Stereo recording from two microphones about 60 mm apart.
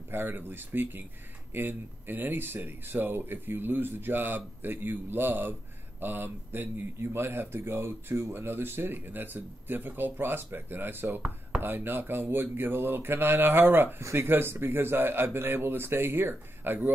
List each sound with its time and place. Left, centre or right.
0.1 s speech: right